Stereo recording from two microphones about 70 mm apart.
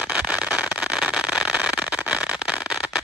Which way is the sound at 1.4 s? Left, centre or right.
Centre.